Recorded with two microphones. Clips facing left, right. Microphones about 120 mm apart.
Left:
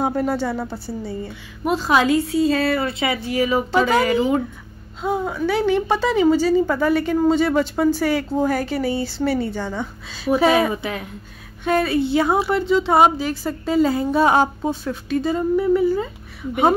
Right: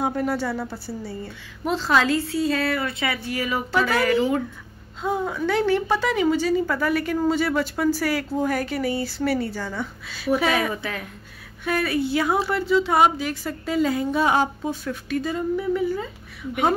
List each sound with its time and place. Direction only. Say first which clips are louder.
0.0 s a woman's voice: left 3 dB; 30° left (ahead or behind)
2.5 s a woman's voice: left 4 dB; 30° left (ahead or behind)